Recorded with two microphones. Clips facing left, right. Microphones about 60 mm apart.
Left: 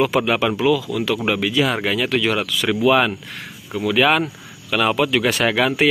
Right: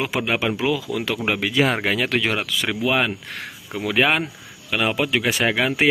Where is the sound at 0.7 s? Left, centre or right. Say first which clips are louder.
Left 4 dB; right.